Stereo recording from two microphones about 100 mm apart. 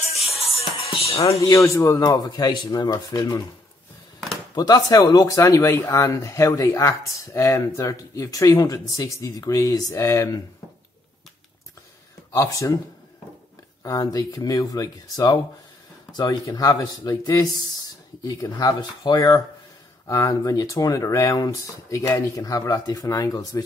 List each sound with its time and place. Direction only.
0.3 s music: 85° left
1.3 s speech: 30° left (ahead or behind)
4.6 s speech: 40° left (ahead or behind)
12.3 s speech: 30° left (ahead or behind)
13.8 s speech: 35° left (ahead or behind)